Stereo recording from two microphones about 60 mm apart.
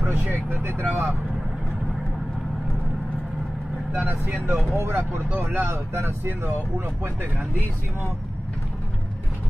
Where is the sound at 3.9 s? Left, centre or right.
Right.